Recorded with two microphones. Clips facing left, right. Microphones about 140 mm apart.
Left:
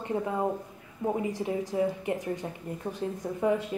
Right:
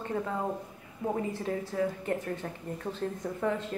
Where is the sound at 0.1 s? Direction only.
20° left (ahead or behind).